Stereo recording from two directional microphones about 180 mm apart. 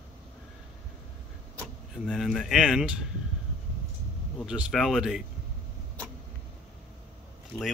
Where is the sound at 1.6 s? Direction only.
Centre (ahead or behind).